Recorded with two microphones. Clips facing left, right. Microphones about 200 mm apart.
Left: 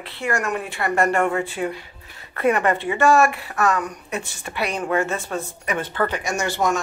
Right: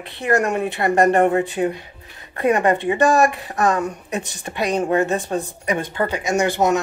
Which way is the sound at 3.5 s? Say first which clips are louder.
Right 2 dB; 35° right (ahead or behind).